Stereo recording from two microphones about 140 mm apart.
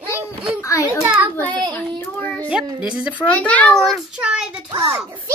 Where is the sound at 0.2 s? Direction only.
40° right (ahead or behind).